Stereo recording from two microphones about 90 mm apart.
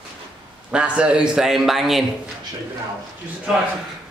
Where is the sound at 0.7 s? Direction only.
10° right (ahead or behind).